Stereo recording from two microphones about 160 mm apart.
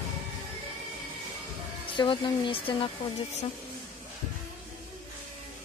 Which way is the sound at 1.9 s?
30° left (ahead or behind).